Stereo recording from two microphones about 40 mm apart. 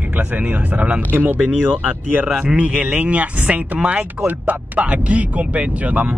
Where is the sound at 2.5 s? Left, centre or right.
Right.